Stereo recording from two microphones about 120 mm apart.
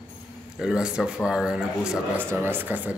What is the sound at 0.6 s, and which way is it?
Speech, 5° right (ahead or behind).